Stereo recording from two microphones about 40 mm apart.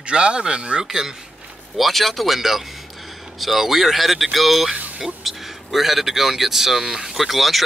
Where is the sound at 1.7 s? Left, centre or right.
Centre.